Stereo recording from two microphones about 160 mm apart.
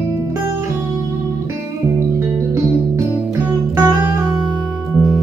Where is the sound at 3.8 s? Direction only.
15° right (ahead or behind).